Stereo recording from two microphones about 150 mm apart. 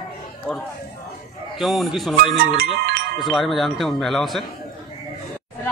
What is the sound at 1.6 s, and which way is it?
Speech, centre (ahead or behind).